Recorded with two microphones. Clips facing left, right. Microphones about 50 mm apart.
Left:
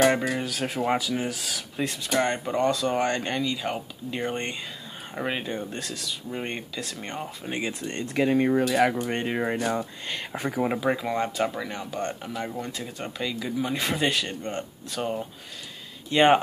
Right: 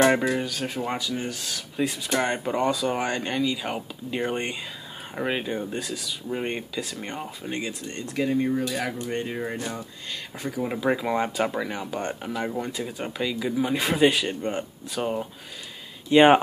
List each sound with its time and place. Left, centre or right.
0.0 s speech: centre
0.4 s speech: centre
1.9 s speech: centre
7.9 s speech: left
10.9 s speech: centre